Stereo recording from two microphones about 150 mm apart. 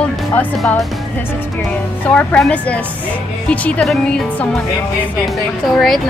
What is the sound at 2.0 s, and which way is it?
Speech, 10° left (ahead or behind).